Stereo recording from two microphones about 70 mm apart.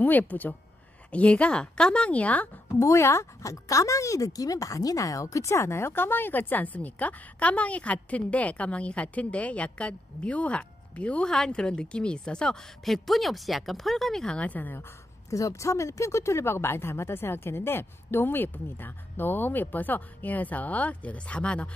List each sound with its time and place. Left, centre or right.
0.0 s speech: left
2.8 s speech: left
15.2 s speech: left; by 21.6 s centre